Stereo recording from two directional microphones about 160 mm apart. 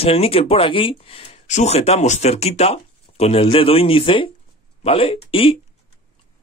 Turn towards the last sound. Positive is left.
turn(degrees=35)  # may be behind; listen again after turning